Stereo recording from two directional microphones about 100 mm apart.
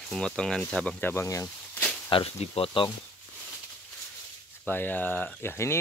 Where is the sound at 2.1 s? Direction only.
65° left (ahead or behind).